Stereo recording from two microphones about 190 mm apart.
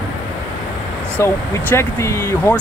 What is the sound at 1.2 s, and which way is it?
Speech, 15° left (ahead or behind).